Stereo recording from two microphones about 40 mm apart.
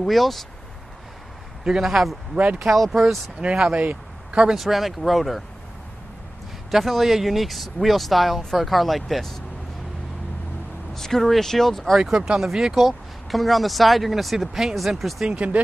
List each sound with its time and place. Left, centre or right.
0.0 s speech: centre
1.8 s a man's voice: centre
2.3 s speech: right
2.7 s speech: centre
3.4 s speech: right
3.7 s speech: right
4.3 s speech: right
4.6 s speech: centre
6.7 s speech: centre
11.0 s speech: centre
12.4 s speech: centre
15.3 s speech: right